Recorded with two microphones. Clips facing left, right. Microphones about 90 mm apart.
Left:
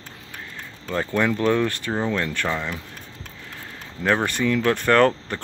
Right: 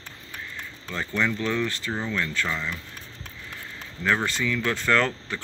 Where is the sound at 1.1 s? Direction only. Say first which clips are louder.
Left 5 dB; 50° left (ahead or behind).